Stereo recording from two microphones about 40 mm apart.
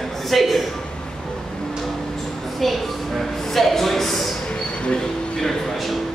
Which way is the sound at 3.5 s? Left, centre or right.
Centre.